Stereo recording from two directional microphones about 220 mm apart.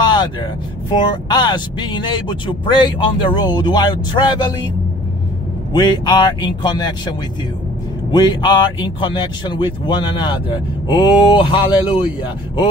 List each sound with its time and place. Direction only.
0.0 s vehicle: 20° left (ahead or behind)
0.9 s speech: 20° left (ahead or behind)
5.7 s speech: 20° left (ahead or behind)
11.3 s speech: 20° left (ahead or behind)